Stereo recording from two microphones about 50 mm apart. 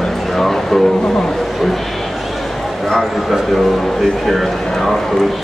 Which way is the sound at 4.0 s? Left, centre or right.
Centre.